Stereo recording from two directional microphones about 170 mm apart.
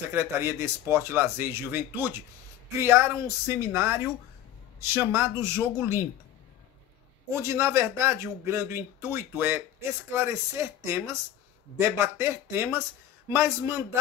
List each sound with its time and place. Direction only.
0.1 s speech: 15° right (ahead or behind)
7.2 s speech: 15° right (ahead or behind)